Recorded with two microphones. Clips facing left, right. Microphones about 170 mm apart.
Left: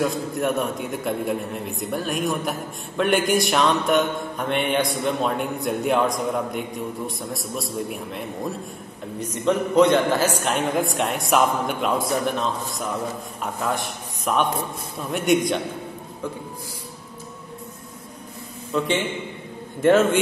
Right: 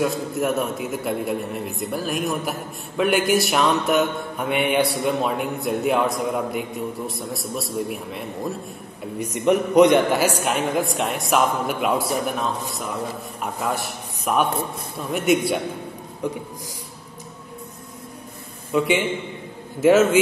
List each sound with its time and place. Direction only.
0.0 s mantra: 5° right (ahead or behind)
9.2 s a man's voice: 15° right (ahead or behind)
10.4 s mantra: centre (ahead or behind)
14.2 s mantra: 5° right (ahead or behind)
18.7 s a man's voice: 10° right (ahead or behind)
19.8 s mantra: 5° right (ahead or behind)